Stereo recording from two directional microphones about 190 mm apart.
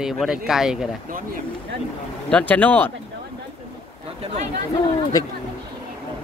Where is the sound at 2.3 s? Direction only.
10° left (ahead or behind).